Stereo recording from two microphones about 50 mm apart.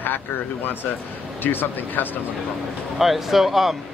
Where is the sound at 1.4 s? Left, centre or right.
Left.